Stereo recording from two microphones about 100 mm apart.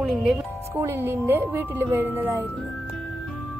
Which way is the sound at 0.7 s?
25° right (ahead or behind).